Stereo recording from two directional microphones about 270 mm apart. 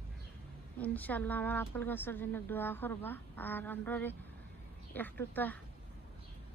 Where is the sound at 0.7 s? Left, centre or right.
Centre.